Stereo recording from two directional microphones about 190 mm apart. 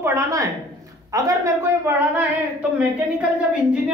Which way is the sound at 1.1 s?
15° right (ahead or behind).